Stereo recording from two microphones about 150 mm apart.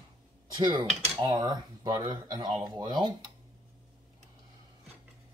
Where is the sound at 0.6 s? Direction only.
30° right (ahead or behind).